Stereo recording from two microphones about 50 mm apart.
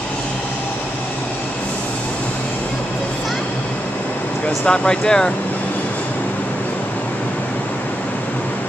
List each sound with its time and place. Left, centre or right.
4.6 s speech: centre